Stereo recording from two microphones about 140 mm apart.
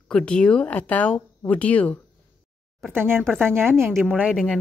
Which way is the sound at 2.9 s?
15° right (ahead or behind).